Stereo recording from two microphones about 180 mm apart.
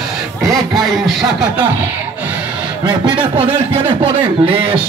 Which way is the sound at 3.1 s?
30° right (ahead or behind).